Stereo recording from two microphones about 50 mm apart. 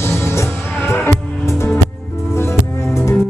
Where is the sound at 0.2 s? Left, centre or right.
Left.